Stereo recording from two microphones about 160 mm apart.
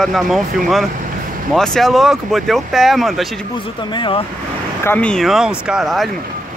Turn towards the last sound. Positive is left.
turn(degrees=0)  # may be behind; listen again after turning